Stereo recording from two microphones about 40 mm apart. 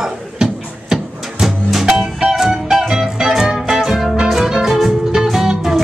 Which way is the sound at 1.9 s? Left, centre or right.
Centre.